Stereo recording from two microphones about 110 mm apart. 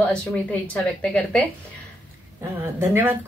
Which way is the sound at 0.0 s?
10° left (ahead or behind).